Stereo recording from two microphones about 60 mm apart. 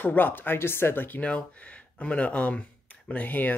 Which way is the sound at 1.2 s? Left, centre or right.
Left.